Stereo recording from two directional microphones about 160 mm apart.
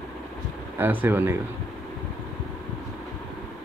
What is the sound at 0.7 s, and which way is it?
Speech, 10° right (ahead or behind).